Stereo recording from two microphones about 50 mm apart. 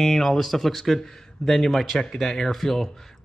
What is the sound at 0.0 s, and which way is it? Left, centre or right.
Speech, centre.